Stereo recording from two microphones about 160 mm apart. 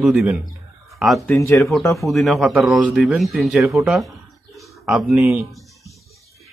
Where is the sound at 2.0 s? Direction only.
Centre (ahead or behind).